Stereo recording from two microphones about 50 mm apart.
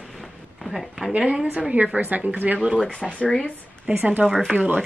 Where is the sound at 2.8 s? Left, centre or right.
Left.